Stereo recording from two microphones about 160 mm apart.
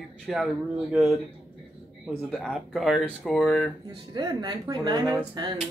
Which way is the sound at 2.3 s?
Centre (ahead or behind).